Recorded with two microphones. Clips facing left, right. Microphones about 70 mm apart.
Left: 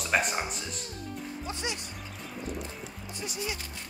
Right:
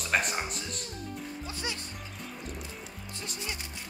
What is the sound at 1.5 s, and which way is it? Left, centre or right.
Speech, left.